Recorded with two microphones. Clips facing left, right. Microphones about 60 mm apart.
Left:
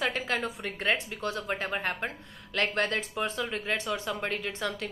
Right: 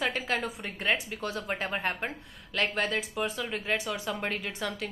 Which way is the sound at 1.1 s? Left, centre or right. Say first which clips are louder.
Left 1 dB; left.